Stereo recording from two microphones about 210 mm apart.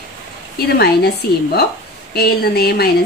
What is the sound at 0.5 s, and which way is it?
A woman's voice, 50° left (ahead or behind).